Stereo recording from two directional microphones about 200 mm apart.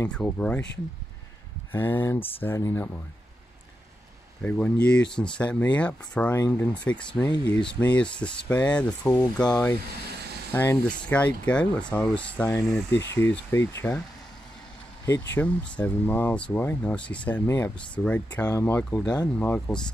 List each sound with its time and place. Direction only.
0.1 s speech: 5° left (ahead or behind)
1.7 s speech: 10° left (ahead or behind)
4.4 s speech: 5° left (ahead or behind)
9.1 s speech: 20° left (ahead or behind)
15.3 s speech: 5° left (ahead or behind)